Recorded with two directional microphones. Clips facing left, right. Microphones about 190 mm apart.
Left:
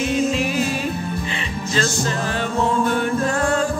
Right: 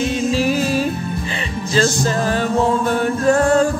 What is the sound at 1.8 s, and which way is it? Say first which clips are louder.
Music: right 6 dB; 40° right (ahead or behind).